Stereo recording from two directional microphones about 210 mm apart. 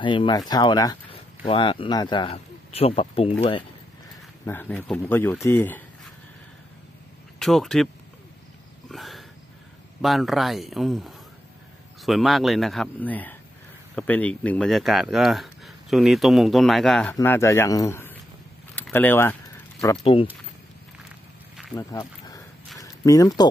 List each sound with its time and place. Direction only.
0.0 s speech: 25° left (ahead or behind)
4.5 s speech: 10° left (ahead or behind)
7.3 s speech: centre (ahead or behind)
8.9 s a sound: centre (ahead or behind)
10.0 s speech: centre (ahead or behind); by 20.2 s 25° left (ahead or behind)
21.7 s speech: 15° left (ahead or behind)